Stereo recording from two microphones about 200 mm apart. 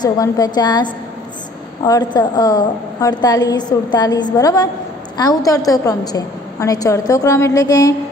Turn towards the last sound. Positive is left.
turn(degrees=15)  # may be behind; listen again after turning